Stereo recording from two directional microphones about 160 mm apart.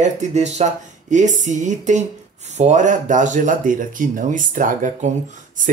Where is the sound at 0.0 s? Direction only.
45° right (ahead or behind).